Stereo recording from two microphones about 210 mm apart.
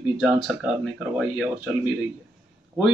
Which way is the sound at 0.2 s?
5° right (ahead or behind).